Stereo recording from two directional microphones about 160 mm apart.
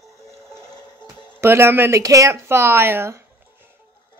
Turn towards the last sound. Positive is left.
turn(degrees=-15)  # may be behind; listen again after turning